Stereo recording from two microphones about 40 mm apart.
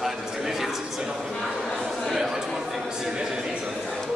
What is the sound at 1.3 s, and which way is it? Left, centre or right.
Speech, centre.